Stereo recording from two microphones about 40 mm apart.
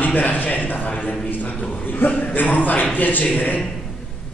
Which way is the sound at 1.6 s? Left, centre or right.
Left.